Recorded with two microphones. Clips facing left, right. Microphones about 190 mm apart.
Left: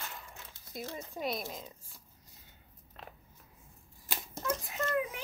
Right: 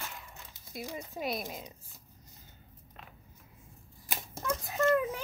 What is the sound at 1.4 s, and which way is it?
Speech, 15° right (ahead or behind).